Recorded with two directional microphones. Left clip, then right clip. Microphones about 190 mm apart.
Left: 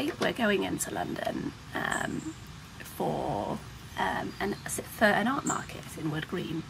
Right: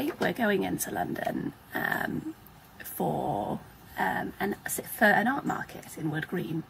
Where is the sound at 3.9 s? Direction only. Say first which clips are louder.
Right 1 dB; 20° left (ahead or behind).